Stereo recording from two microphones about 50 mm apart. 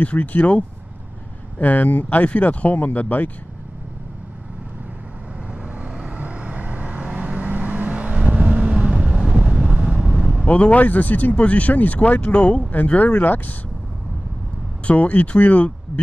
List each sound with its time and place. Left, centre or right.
0.0 s speech: left
2.2 s speech: left
5.8 s vehicle: centre
9.9 s vehicle: centre
10.4 s speech: left
14.9 s speech: left